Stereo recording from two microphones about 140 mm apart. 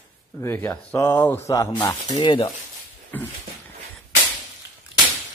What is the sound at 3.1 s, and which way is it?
Speech, 15° left (ahead or behind).